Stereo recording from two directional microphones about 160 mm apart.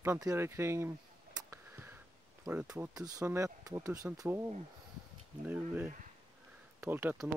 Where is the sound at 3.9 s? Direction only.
10° right (ahead or behind).